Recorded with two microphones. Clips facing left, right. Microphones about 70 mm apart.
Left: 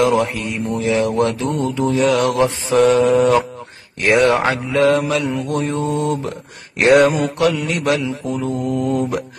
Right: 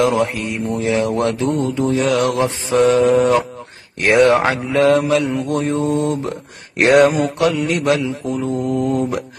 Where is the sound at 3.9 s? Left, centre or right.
Right.